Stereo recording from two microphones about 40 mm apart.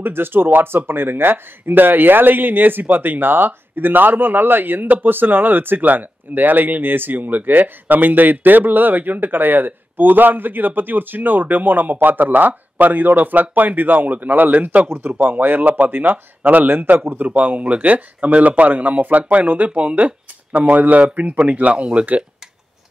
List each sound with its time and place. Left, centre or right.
0.0 s speech: right
14.9 s speech: right
15.1 s speech: right
17.0 s a man's voice: right
17.3 s speech: right
19.7 s speech: right
20.7 s speech: right
21.0 s speech: right